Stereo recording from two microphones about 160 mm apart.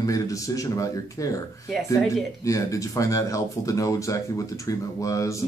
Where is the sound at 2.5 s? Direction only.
20° left (ahead or behind).